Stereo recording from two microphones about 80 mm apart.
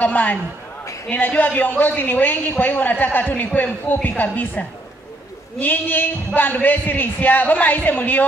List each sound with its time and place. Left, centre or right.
0.0 s a man's voice: centre